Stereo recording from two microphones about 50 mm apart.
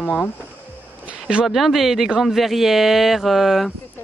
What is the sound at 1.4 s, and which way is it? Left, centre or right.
Speech, centre.